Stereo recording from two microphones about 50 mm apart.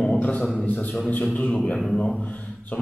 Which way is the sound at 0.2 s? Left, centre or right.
Left.